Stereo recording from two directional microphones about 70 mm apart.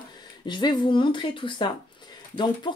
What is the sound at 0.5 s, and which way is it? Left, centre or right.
Speech, left.